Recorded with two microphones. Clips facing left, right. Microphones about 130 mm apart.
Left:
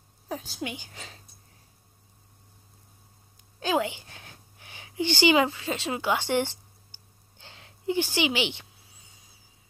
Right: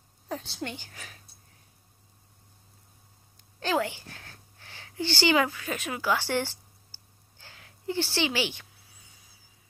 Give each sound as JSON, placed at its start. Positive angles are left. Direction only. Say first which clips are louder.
{"t": 0.3, "sound": "a woman's voice", "louder": "left 1 dB", "side_deg": 10}
{"t": 0.9, "sound": "speech", "louder": "left 2 dB", "side_deg": 25}
{"t": 3.5, "sound": "a sound", "louder": "left 1 dB", "side_deg": 15}